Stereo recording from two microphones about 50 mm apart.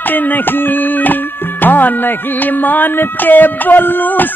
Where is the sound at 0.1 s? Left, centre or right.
Left.